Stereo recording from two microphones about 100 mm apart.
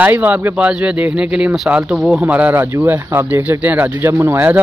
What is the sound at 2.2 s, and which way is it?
Speech, 15° right (ahead or behind).